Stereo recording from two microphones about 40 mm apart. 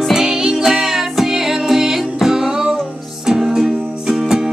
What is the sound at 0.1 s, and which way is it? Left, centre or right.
Music, centre.